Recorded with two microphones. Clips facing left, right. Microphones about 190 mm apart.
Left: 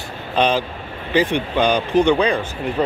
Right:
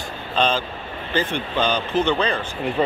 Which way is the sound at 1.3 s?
15° left (ahead or behind).